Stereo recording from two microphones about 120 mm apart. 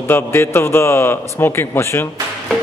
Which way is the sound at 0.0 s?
20° left (ahead or behind).